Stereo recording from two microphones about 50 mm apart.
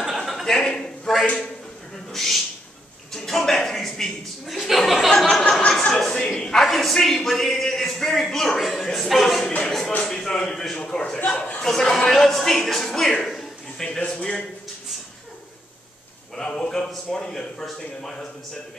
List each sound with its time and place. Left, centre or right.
0.0 s a sound: centre
2.1 s a man's voice: centre
3.1 s a sound: centre
4.5 s a man's voice: centre
5.1 s a sound: centre
5.6 s a man's voice: centre
11.1 s a man's voice: left
11.6 s a man's voice: centre
16.3 s a man's voice: centre